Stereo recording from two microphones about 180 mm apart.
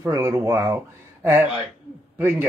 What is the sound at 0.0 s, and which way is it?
Speech, 15° right (ahead or behind).